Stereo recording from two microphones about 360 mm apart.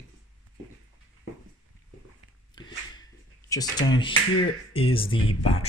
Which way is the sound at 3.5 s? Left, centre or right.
Centre.